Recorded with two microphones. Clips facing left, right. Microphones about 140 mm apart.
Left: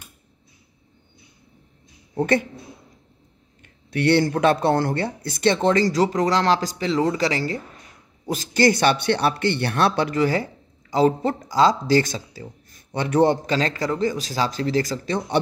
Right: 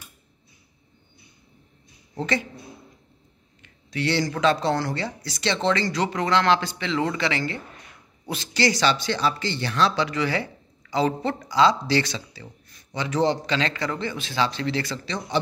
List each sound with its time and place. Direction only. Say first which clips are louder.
2.1 s speech: left 6 dB; 55° left (ahead or behind)
3.6 s speech: left 6 dB; 55° left (ahead or behind); by 15.1 s 40° left (ahead or behind)